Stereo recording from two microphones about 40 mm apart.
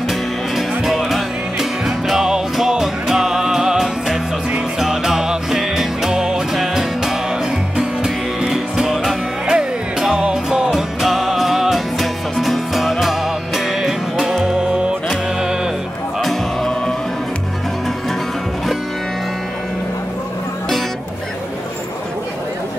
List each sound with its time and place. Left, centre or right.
0.1 s music: centre
7.7 s music: right
11.1 s music: centre; by 15.0 s right